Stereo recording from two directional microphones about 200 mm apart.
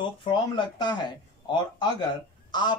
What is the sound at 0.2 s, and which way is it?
Speech, 25° left (ahead or behind).